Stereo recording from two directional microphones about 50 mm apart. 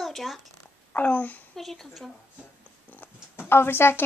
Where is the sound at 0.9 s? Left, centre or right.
Left.